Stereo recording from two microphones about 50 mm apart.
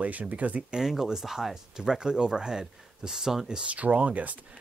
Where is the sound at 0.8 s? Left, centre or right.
Centre.